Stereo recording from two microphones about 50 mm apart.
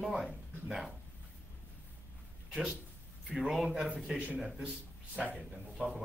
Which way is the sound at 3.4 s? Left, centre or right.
Centre.